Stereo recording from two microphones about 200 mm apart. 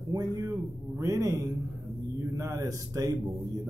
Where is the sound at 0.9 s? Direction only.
15° right (ahead or behind).